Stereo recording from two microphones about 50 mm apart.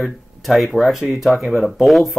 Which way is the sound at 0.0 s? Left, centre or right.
Centre.